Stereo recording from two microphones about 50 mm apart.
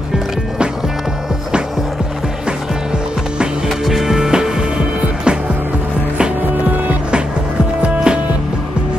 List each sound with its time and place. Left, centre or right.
3.6 s music: centre
7.8 s music: centre